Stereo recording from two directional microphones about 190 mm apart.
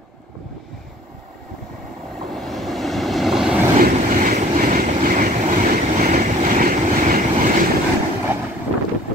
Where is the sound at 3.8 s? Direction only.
45° right (ahead or behind).